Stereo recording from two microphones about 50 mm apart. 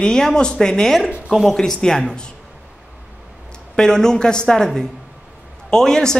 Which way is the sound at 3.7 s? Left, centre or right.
Centre.